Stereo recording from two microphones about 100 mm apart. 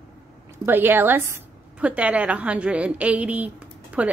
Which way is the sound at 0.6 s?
20° right (ahead or behind).